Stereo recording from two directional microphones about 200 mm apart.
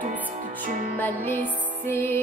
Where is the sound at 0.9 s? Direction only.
10° left (ahead or behind).